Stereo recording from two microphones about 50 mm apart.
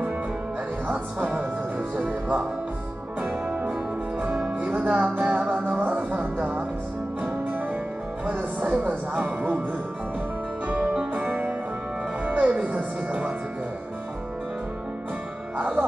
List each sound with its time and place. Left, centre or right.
2.0 s music: right
4.6 s music: right
5.2 s music: centre
5.8 s music: right
8.3 s speech: right
10.7 s music: right
11.2 s music: right
12.3 s music: right
15.5 s music: right